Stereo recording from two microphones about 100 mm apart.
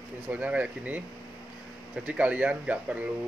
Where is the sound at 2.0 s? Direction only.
15° right (ahead or behind).